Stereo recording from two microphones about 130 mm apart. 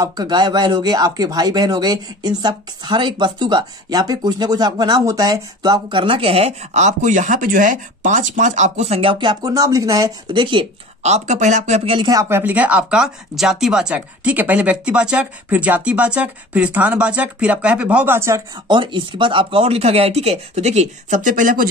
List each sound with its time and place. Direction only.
0.0 s speech: 30° right (ahead or behind)
10.3 s speech: 40° right (ahead or behind)
11.0 s speech: 60° right (ahead or behind)
11.8 s speech: 45° right (ahead or behind)
12.1 s speech: 20° right (ahead or behind)
18.7 s speech: 40° right (ahead or behind); by 21.6 s 85° right